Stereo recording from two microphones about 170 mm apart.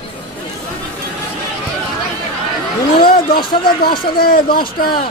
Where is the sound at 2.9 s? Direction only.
60° left (ahead or behind).